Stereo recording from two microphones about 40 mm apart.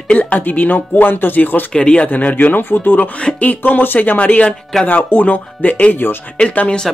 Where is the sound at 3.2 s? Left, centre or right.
Left.